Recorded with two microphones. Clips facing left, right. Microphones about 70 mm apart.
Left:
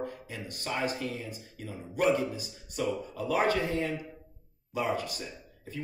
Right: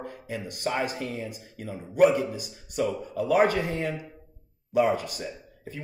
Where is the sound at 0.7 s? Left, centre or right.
Right.